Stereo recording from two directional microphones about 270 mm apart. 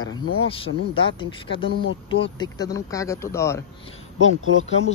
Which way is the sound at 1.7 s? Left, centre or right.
Left.